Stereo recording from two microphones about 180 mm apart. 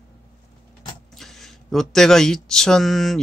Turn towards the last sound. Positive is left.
turn(degrees=0)  # may be behind; listen again after turning